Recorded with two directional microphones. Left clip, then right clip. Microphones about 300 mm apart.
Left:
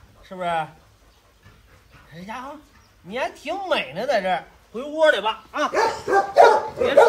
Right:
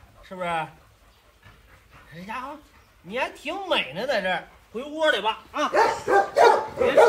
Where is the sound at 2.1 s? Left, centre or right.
Centre.